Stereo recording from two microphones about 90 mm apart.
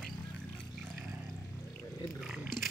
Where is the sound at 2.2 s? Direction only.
5° right (ahead or behind).